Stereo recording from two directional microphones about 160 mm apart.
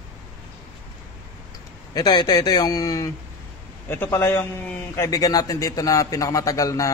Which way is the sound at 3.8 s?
15° left (ahead or behind).